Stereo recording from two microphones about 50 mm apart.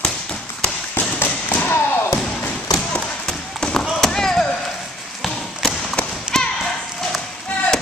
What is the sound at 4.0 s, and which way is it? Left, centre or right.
Chop, centre.